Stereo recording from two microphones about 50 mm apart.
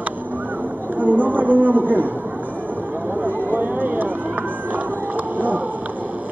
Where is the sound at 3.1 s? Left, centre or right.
Right.